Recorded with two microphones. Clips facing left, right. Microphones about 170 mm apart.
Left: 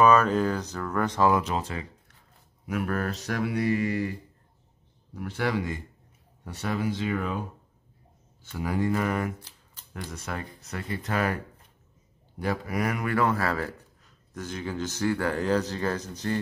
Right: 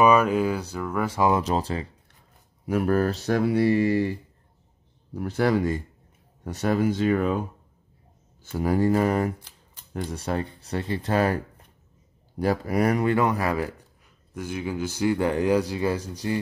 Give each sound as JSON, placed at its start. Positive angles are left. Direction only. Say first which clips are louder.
{"t": 0.0, "sound": "speech", "louder": "right 1 dB", "side_deg": -10}
{"t": 1.3, "sound": "speech", "louder": "right 3 dB", "side_deg": -35}
{"t": 5.1, "sound": "speech", "louder": "right 6 dB", "side_deg": -40}
{"t": 8.5, "sound": "speech", "louder": "right 5 dB", "side_deg": -40}
{"t": 13.1, "sound": "speech", "louder": "right 2 dB", "side_deg": -20}